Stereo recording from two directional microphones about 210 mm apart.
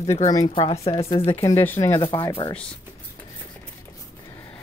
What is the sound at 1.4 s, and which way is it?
Speech, 10° left (ahead or behind).